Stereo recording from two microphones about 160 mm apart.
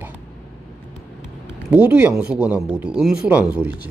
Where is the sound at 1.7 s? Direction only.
10° right (ahead or behind).